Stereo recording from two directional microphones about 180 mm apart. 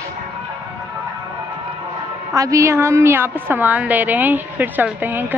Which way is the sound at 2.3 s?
20° right (ahead or behind).